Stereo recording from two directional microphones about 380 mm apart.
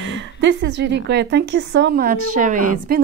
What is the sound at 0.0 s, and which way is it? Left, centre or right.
A woman's voice, right.